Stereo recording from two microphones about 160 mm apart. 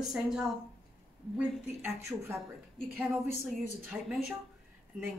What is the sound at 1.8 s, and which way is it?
Speech, 15° right (ahead or behind).